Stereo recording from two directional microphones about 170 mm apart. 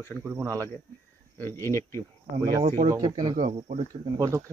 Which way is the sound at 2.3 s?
45° right (ahead or behind).